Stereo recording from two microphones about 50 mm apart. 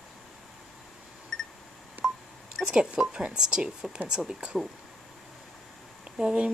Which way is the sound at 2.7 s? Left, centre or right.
Centre.